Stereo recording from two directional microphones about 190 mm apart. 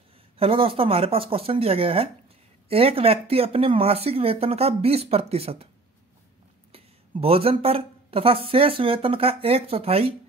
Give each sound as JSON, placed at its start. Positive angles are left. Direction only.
{"t": 0.4, "sound": "speech", "side_deg": -30}
{"t": 6.7, "sound": "a woman's voice", "side_deg": -30}